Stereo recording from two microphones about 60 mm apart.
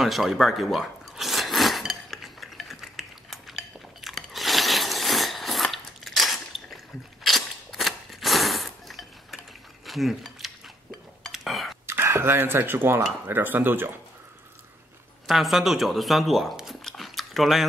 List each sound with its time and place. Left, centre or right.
0.0 s a sound: centre
1.8 s cutlery: centre
4.0 s biting: centre
7.2 s a sound: centre
11.3 s whispering: centre
11.8 s speech: right
15.2 s speech: centre
16.5 s biting: centre